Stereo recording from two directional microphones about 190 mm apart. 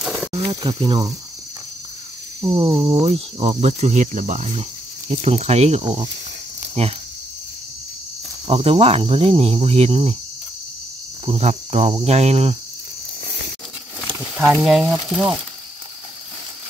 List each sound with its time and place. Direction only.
0.0 s a sound: centre (ahead or behind)
0.6 s speech: 20° right (ahead or behind)
2.4 s speech: 20° right (ahead or behind)
3.1 s speech: 35° right (ahead or behind)
8.5 s speech: 30° right (ahead or behind)
11.2 s speech: 35° right (ahead or behind)
14.2 s speech: 5° right (ahead or behind)
14.9 s sizzle: 5° right (ahead or behind)